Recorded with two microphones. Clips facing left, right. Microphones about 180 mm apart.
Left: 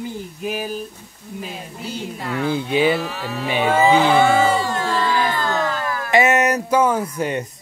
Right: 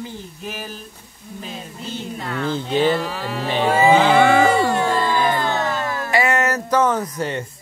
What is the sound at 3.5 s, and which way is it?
Speech, 10° left (ahead or behind).